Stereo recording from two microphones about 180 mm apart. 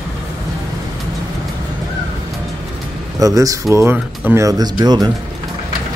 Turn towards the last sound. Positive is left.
turn(degrees=-20)  # may be behind; listen again after turning